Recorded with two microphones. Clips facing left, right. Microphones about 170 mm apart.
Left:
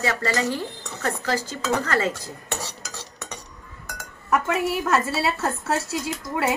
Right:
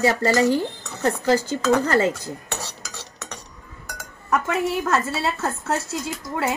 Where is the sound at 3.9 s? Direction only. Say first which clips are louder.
Even; 5° left (ahead or behind).